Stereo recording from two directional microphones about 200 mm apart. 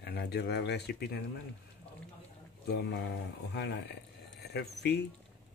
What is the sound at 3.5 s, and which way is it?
Speech, 55° left (ahead or behind).